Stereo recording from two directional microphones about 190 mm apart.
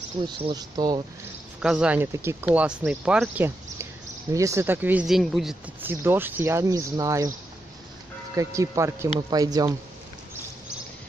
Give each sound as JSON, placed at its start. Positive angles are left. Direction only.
{"t": 0.3, "sound": "speech", "side_deg": -25}
{"t": 1.6, "sound": "speech", "side_deg": -5}
{"t": 8.4, "sound": "speech", "side_deg": -15}